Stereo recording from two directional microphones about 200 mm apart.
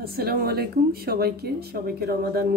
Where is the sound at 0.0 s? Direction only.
50° right (ahead or behind).